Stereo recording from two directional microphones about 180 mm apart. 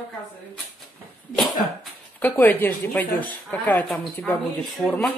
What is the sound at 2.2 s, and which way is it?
A woman's voice, 10° left (ahead or behind).